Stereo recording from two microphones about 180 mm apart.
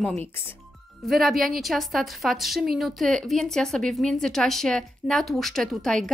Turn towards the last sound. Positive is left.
turn(degrees=0)  # may be behind; listen again after turning